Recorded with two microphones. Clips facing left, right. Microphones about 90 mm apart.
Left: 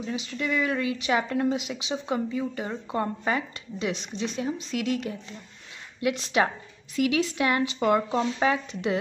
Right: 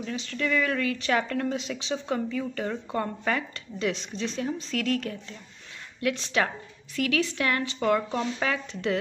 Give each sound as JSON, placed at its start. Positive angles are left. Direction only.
{"t": 0.0, "sound": "speech", "side_deg": 10}